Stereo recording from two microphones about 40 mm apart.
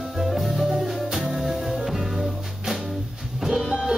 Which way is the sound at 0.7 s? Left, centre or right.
Centre.